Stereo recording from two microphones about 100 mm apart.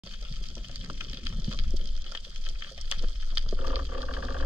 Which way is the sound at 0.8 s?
20° right (ahead or behind).